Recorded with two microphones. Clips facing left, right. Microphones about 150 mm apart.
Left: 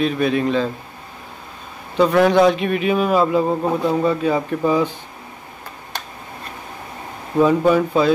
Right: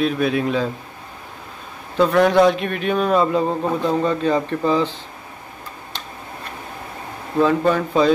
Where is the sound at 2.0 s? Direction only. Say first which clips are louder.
Left 1 dB; centre (ahead or behind).